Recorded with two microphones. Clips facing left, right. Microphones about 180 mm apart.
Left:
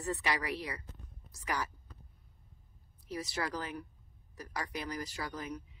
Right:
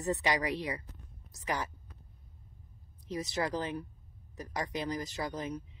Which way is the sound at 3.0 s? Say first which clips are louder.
Right 4 dB; 20° right (ahead or behind).